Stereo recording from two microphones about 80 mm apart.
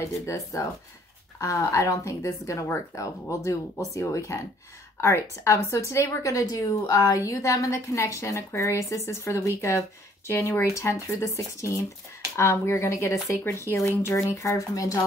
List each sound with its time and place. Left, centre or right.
0.0 s a woman's voice: left